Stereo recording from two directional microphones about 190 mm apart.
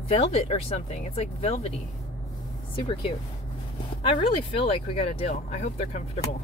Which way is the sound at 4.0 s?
25° left (ahead or behind).